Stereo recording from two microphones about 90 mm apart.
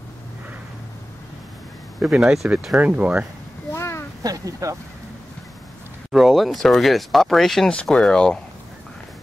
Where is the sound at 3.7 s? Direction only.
30° left (ahead or behind).